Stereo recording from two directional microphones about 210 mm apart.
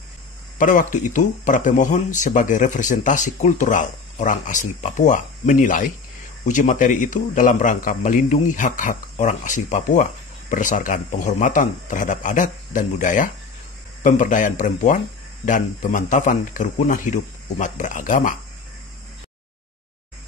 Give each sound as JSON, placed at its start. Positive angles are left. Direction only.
{"t": 0.6, "sound": "speech", "side_deg": 40}